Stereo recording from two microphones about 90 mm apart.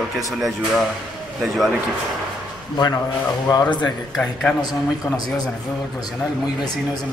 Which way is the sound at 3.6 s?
15° left (ahead or behind).